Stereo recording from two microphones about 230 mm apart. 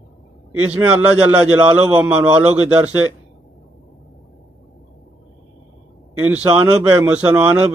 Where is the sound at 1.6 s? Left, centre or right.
Centre.